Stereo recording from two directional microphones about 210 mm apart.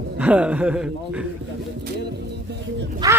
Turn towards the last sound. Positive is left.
turn(degrees=-20)  # may be behind; listen again after turning